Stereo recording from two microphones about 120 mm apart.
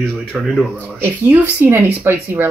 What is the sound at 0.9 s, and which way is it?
Speech, 15° right (ahead or behind).